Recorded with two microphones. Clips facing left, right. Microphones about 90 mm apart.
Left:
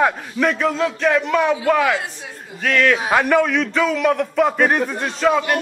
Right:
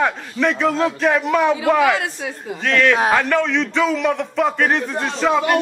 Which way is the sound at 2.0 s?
90° right.